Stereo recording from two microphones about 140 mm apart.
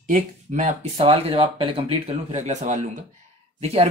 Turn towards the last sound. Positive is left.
turn(degrees=-45)  # may be behind; listen again after turning